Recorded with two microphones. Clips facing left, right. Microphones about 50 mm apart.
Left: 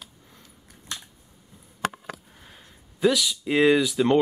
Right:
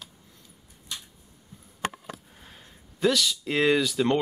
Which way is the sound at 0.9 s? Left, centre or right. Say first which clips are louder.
Left 2 dB; left.